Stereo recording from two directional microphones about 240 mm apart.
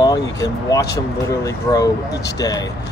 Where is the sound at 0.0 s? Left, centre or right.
Centre.